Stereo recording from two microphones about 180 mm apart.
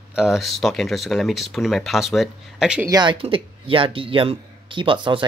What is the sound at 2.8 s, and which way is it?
Speech, 25° right (ahead or behind).